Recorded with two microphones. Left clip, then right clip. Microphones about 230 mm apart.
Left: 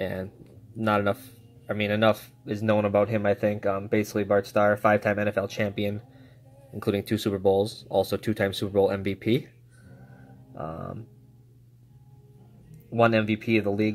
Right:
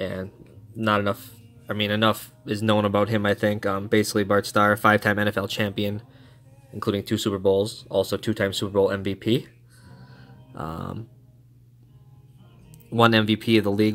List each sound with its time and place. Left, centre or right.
0.0 s speech: centre
10.6 s speech: right
13.0 s speech: right